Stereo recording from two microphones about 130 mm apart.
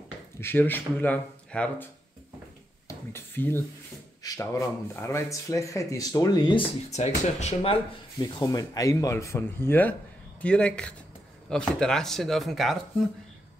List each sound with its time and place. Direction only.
0.4 s speech: 15° left (ahead or behind)
2.9 s a sound: 20° left (ahead or behind)
4.2 s speech: 25° left (ahead or behind)
6.9 s speech: 60° left (ahead or behind)
8.2 s speech: 30° left (ahead or behind); by 12.7 s centre (ahead or behind)